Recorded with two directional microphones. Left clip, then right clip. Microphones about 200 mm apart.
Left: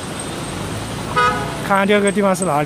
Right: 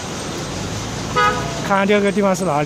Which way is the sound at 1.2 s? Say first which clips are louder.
Even; 55° left (ahead or behind).